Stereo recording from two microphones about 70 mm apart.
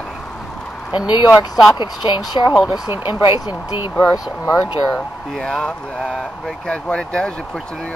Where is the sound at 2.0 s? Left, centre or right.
Left.